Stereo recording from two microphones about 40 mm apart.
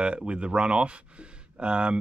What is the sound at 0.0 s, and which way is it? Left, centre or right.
Speech, right.